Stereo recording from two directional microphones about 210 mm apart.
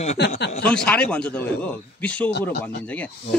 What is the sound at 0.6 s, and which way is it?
A man's voice, 5° left (ahead or behind).